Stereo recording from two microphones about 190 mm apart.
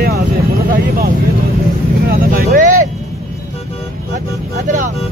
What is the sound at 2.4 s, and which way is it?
Speech, 45° right (ahead or behind).